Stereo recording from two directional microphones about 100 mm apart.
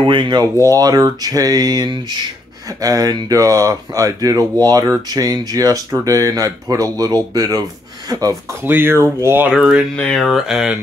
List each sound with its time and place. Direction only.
0.0 s speech: 55° right (ahead or behind)
0.6 s speech: 35° right (ahead or behind)
8.6 s speech: 20° right (ahead or behind)
9.5 s speech: 5° right (ahead or behind)